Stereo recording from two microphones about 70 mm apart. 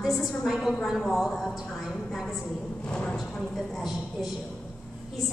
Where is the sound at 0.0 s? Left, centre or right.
Centre.